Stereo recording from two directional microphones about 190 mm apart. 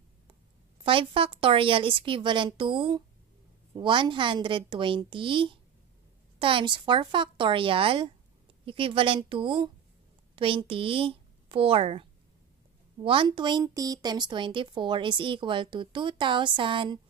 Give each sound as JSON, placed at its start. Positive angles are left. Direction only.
{"t": 0.8, "sound": "a woman's voice", "side_deg": -30}